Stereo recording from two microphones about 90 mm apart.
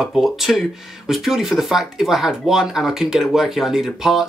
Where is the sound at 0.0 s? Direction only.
Centre (ahead or behind).